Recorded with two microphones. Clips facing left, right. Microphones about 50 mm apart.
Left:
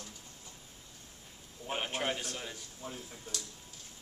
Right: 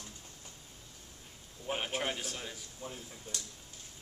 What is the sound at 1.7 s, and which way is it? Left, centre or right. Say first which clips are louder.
Speech: even; centre.